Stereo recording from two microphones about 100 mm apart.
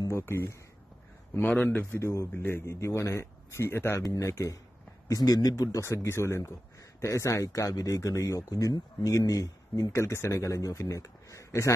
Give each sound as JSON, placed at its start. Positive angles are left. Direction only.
{"t": 0.1, "sound": "a man's voice", "side_deg": 25}